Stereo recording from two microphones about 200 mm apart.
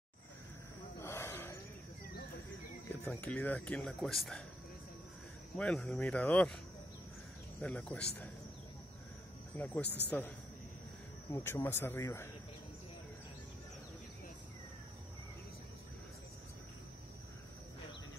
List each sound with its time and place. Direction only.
0.9 s a sound: 15° left (ahead or behind)
3.1 s speech: 5° left (ahead or behind)
5.6 s speech: 5° left (ahead or behind)
7.6 s speech: 5° left (ahead or behind)
9.5 s speech: 10° left (ahead or behind)
9.8 s a man's voice: 55° left (ahead or behind)
11.3 s speech: 10° left (ahead or behind)